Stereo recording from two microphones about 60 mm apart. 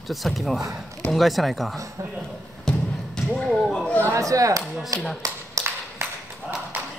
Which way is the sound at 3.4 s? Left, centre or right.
Centre.